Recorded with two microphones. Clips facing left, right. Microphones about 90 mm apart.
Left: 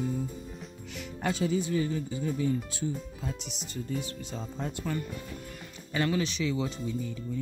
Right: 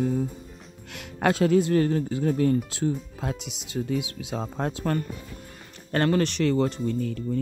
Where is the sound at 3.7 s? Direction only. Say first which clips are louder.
Right 7 dB; 90° right.